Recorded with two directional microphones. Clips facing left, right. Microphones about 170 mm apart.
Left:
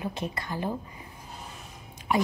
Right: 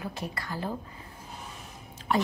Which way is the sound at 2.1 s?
10° left (ahead or behind).